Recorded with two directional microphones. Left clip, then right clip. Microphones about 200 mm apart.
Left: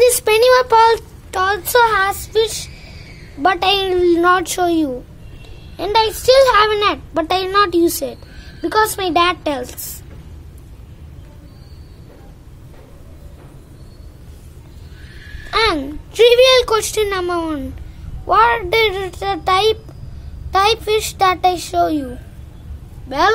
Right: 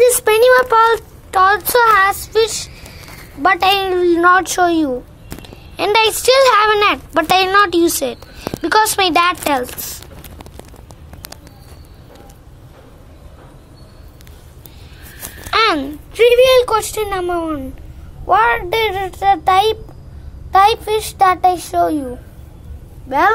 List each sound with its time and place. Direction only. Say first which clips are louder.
0.0 s speech: right 1 dB; 5° right (ahead or behind)
15.5 s a sound: right 2 dB; 10° right (ahead or behind)
16.1 s a woman's voice: even; 15° left (ahead or behind)
23.0 s speech: right 2 dB; 10° left (ahead or behind)